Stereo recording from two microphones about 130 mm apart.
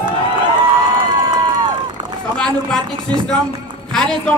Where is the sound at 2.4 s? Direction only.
5° left (ahead or behind).